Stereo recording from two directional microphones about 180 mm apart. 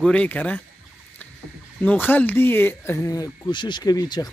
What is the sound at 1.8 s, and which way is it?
Speech, 10° left (ahead or behind).